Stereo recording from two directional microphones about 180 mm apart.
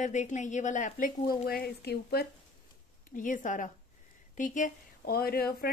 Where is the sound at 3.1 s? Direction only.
45° left (ahead or behind).